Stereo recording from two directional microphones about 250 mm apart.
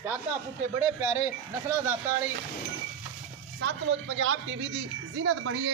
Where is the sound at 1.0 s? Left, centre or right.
Centre.